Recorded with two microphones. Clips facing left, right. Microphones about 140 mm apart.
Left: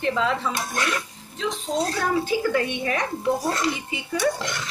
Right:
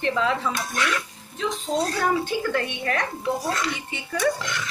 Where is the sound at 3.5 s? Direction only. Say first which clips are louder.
Left 2 dB; 30° left (ahead or behind).